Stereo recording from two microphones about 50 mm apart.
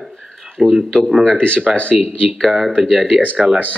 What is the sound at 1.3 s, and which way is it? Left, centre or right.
Speech, left.